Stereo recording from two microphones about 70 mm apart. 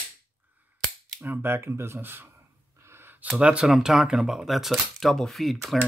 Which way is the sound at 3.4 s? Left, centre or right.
Centre.